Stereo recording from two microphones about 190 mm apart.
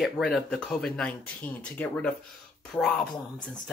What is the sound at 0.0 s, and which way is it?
Speech, centre (ahead or behind).